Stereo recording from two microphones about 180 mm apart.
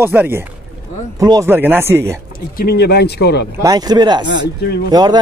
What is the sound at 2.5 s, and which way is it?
Speech, 60° left (ahead or behind).